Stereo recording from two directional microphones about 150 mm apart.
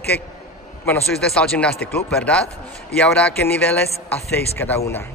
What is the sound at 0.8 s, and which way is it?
Speech, 5° left (ahead or behind).